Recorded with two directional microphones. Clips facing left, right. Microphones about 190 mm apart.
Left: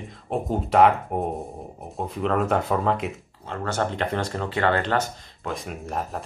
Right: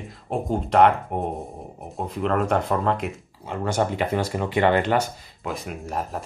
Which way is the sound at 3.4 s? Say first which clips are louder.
Right 3 dB; 10° right (ahead or behind).